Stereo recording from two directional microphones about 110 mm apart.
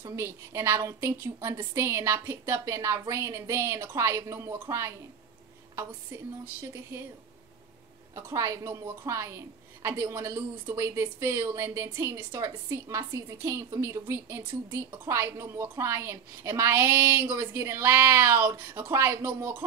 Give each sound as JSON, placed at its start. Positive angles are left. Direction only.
{"t": 0.0, "sound": "a woman's voice", "side_deg": -25}
{"t": 6.6, "sound": "a woman's voice", "side_deg": -20}
{"t": 8.3, "sound": "a woman's voice", "side_deg": -30}